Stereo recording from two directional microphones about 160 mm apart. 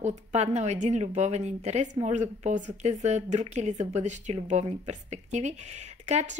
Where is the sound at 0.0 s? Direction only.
45° right (ahead or behind).